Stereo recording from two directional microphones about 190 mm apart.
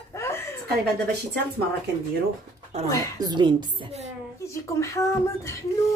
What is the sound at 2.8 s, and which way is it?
Speech, 20° left (ahead or behind).